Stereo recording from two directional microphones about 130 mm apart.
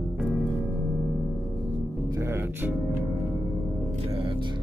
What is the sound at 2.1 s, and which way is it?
Music, 20° right (ahead or behind).